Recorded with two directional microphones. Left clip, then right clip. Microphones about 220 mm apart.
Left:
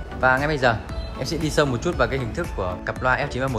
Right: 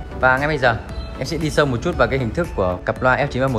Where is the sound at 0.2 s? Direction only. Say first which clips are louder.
Right 3 dB; 15° left (ahead or behind).